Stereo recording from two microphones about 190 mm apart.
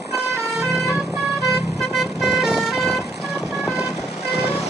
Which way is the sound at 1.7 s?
Centre (ahead or behind).